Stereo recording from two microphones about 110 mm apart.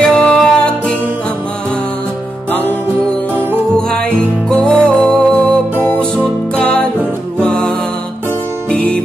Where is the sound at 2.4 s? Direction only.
15° left (ahead or behind).